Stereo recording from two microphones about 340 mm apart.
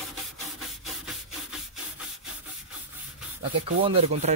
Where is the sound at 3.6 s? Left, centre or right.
Centre.